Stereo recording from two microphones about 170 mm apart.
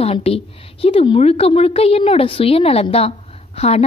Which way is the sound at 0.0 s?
35° left (ahead or behind).